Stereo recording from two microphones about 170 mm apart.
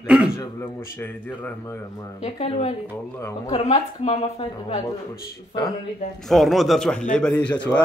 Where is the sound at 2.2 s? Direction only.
40° left (ahead or behind).